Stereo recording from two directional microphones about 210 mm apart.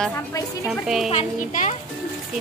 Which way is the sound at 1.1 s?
35° left (ahead or behind).